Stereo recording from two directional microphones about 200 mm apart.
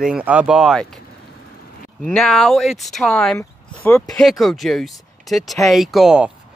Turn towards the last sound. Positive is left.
turn(degrees=0)  # may be behind; listen again after turning